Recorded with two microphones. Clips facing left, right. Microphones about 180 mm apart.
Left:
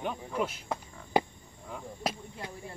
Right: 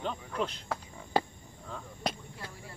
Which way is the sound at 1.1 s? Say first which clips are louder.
Left 2 dB; 15° left (ahead or behind).